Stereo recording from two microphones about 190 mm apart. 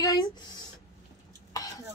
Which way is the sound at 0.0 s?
20° left (ahead or behind).